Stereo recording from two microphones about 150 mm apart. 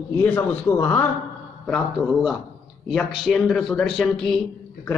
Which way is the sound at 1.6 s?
Centre (ahead or behind).